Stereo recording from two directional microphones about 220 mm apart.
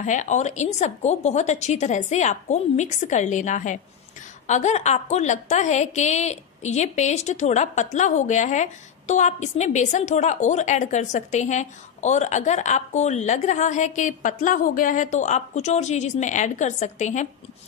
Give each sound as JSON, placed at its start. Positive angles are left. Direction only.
{"t": 0.0, "sound": "a woman's voice", "side_deg": 35}